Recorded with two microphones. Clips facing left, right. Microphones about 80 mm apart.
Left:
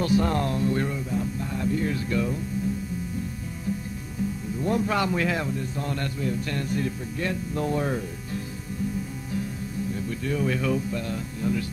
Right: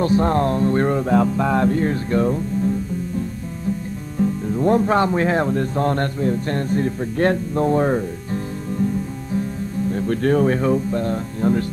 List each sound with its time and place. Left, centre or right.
0.0 s speech: right
0.9 s music: right
1.9 s speech: right
4.2 s speech: right
5.5 s a man's voice: right
7.2 s speech: right
7.5 s speech: right
9.9 s speech: right
10.4 s speech: right